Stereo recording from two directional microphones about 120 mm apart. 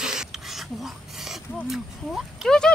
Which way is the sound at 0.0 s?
5° right (ahead or behind).